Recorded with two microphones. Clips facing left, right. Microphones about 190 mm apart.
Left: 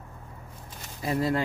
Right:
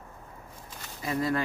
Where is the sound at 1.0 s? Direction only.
30° left (ahead or behind).